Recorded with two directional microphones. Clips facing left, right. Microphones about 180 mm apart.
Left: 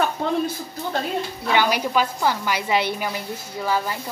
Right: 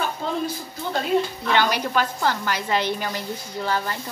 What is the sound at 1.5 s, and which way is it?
A woman's voice, 10° left (ahead or behind).